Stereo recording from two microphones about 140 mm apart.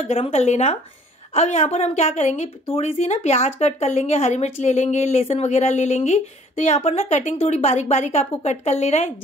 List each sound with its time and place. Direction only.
0.0 s speech: 50° left (ahead or behind)